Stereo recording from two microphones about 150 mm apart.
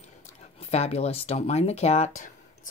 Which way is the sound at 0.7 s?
45° left (ahead or behind).